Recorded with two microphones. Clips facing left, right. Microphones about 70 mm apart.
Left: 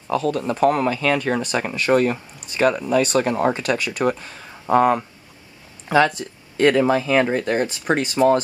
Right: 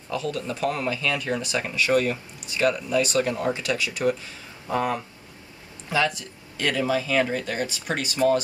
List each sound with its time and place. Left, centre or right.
0.1 s speech: left